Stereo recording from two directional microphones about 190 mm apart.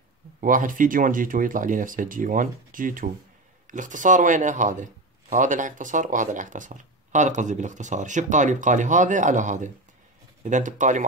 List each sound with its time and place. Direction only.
0.4 s speech: 45° right (ahead or behind)